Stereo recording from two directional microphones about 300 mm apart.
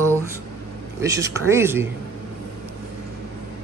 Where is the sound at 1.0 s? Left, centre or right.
Centre.